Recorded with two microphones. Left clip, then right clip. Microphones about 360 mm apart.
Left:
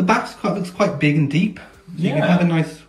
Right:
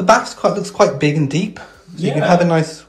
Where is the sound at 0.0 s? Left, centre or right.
Centre.